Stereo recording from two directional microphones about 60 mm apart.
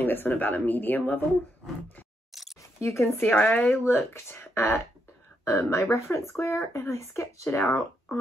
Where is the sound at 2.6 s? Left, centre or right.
Left.